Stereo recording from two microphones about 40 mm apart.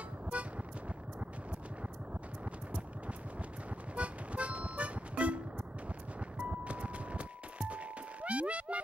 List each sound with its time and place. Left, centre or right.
3.9 s music: right
6.4 s music: right